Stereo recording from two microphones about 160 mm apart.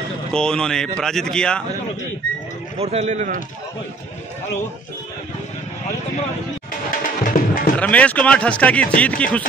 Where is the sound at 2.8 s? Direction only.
45° right (ahead or behind).